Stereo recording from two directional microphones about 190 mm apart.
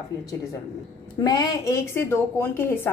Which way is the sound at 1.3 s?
20° left (ahead or behind).